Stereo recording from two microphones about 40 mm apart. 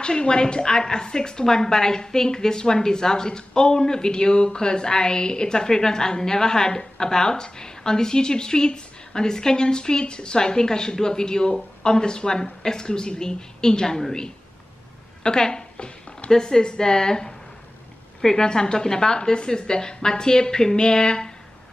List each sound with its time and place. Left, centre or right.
0.0 s a woman's voice: left
15.2 s a sound: centre
16.3 s a woman's voice: centre